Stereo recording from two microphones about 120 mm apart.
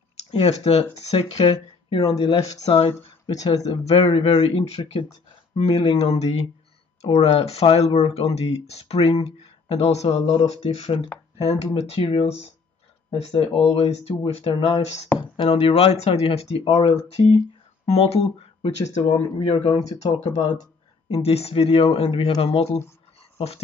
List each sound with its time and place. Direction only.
0.3 s speech: 60° left (ahead or behind)
1.4 s speech: 40° left (ahead or behind)
2.1 s speech: 55° left (ahead or behind)
3.8 s speech: 50° left (ahead or behind)
15.1 s speech: 45° left (ahead or behind)
19.3 s speech: 45° left (ahead or behind)